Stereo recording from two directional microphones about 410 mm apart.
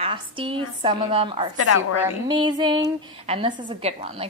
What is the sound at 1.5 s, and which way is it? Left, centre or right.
Speech, left.